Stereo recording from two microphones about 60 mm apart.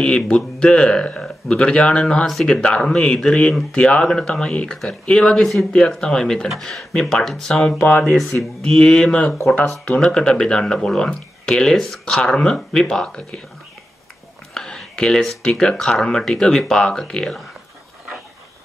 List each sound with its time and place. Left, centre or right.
0.0 s speech: centre
14.5 s a sound: centre
15.4 s speech: centre